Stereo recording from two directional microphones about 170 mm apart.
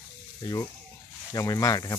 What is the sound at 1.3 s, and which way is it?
Speech, 20° left (ahead or behind).